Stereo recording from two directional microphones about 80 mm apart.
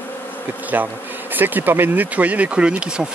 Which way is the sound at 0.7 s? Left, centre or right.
Right.